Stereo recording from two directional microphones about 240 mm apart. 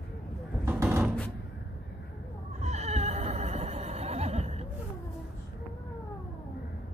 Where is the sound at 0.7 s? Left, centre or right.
Centre.